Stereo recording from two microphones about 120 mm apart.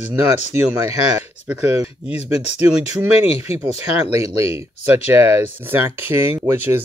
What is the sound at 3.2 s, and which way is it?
Speech, 55° left (ahead or behind).